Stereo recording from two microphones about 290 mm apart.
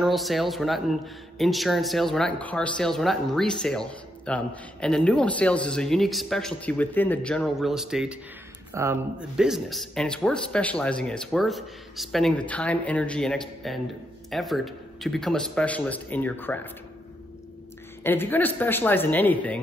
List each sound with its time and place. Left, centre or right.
0.0 s a man's voice: centre
18.0 s speech: centre